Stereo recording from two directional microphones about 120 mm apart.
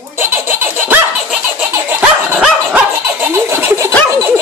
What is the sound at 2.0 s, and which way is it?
Dog, 10° right (ahead or behind).